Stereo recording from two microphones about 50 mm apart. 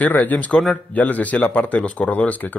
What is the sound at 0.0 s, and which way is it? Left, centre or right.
Speech, left.